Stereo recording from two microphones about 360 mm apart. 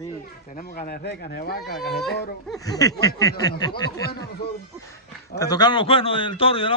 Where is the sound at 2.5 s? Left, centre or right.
Centre.